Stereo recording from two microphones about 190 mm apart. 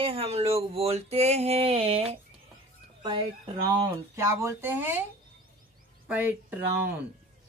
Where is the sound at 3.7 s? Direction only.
20° right (ahead or behind).